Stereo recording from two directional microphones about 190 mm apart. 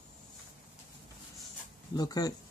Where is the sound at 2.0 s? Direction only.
20° left (ahead or behind).